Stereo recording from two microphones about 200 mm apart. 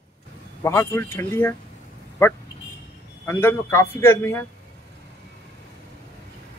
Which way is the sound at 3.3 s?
15° left (ahead or behind).